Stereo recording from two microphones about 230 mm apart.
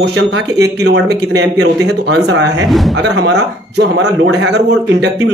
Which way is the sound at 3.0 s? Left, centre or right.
Right.